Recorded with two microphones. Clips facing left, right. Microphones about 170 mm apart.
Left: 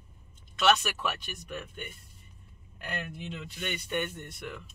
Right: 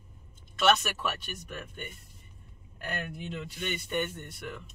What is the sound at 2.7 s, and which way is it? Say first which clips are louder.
Speech: right 1 dB; 45° right (ahead or behind).